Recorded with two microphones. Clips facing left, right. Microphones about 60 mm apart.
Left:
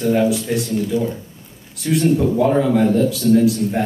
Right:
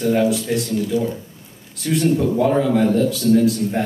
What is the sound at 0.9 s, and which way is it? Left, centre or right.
Speech, left.